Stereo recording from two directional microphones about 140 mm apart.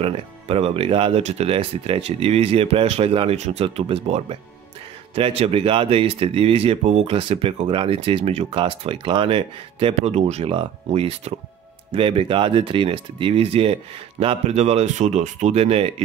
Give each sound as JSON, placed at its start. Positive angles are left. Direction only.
{"t": 0.0, "sound": "speech", "side_deg": -45}